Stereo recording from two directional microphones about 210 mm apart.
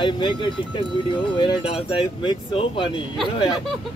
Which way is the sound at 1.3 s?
25° left (ahead or behind).